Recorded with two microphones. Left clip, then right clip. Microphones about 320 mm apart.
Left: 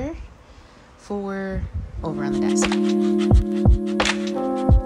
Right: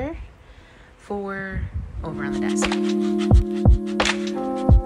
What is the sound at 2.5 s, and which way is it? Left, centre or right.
Music, centre.